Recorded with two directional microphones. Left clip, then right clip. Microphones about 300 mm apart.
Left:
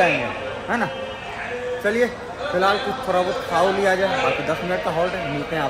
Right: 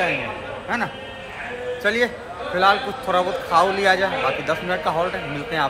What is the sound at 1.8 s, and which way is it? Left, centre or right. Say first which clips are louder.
A man's voice: right 1 dB; centre.